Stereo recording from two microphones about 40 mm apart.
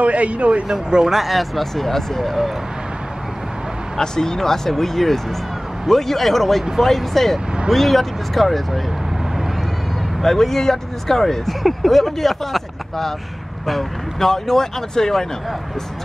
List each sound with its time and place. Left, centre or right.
0.0 s speech: right
0.7 s speech: centre
1.1 s speech: centre
4.0 s speech: centre
10.2 s speech: centre